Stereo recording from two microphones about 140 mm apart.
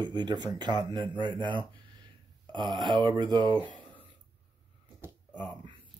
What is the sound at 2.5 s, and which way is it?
Speech, 35° right (ahead or behind).